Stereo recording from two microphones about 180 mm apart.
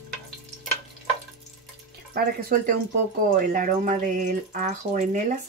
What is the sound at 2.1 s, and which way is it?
Speech, 50° right (ahead or behind).